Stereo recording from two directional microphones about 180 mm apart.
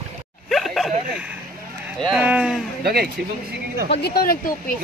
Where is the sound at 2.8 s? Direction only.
60° right (ahead or behind).